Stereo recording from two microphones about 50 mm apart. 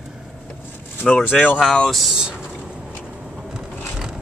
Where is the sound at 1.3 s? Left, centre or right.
Left.